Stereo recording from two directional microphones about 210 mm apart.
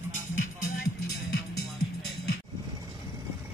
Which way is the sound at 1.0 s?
50° left (ahead or behind).